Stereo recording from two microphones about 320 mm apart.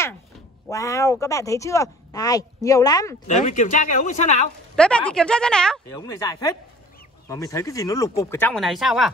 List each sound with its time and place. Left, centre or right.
0.7 s speech: centre
3.4 s speech: left
4.7 s a woman's voice: centre